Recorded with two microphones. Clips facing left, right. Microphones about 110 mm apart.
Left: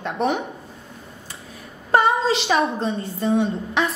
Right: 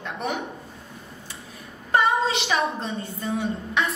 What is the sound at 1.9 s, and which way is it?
A woman's voice, 30° left (ahead or behind).